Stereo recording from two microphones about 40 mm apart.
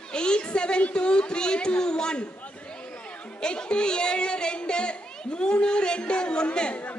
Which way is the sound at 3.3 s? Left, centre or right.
Left.